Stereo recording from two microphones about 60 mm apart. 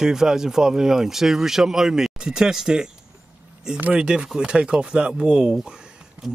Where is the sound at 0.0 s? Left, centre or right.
Centre.